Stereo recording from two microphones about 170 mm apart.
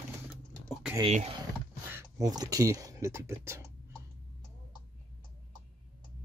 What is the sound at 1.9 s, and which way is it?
Speech, 15° right (ahead or behind).